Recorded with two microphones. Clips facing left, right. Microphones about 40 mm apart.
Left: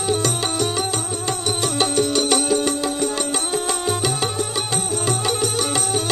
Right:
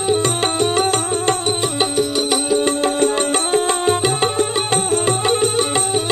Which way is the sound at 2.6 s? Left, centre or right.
Right.